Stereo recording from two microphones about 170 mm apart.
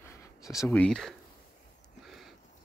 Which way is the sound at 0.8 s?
5° left (ahead or behind).